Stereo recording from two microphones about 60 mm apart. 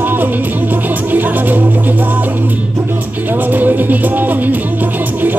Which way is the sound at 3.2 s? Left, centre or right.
Right.